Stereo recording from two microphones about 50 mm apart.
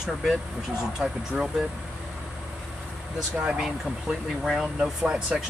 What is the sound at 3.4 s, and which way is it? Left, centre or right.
Speech, centre.